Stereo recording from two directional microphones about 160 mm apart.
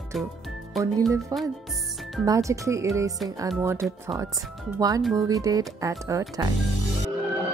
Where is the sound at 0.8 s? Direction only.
Centre (ahead or behind).